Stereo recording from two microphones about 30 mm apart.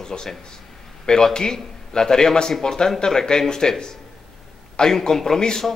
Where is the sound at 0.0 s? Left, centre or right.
Centre.